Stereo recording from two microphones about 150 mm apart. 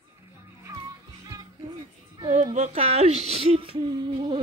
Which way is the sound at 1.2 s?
25° right (ahead or behind).